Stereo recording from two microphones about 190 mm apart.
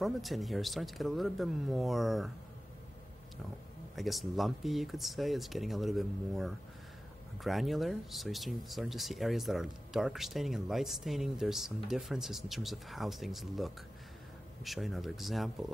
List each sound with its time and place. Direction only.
0.0 s speech: centre (ahead or behind)
3.9 s speech: centre (ahead or behind)